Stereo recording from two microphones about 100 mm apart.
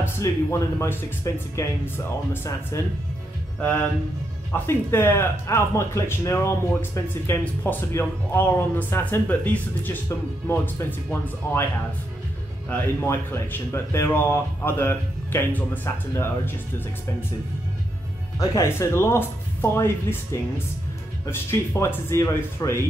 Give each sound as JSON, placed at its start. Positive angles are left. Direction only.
{"t": 0.0, "sound": "speech", "side_deg": 30}
{"t": 4.5, "sound": "speech", "side_deg": 25}
{"t": 12.6, "sound": "speech", "side_deg": 20}
{"t": 18.4, "sound": "speech", "side_deg": 35}